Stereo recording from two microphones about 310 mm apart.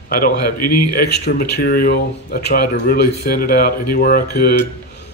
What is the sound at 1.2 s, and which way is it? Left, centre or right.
Speech, left.